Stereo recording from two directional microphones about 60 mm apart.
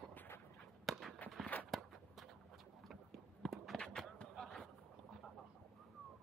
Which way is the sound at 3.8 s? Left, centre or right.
Centre.